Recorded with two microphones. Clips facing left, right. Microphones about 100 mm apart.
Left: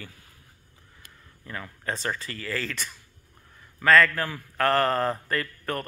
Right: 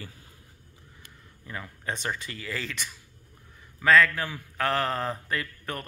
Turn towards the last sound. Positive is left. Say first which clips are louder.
# left 4 dB
turn(degrees=-10)  # may be behind; listen again after turning